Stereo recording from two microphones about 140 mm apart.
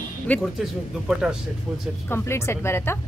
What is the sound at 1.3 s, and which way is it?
Speech, 10° right (ahead or behind).